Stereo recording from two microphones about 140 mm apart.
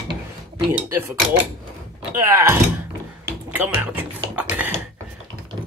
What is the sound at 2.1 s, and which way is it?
Speech, 20° right (ahead or behind).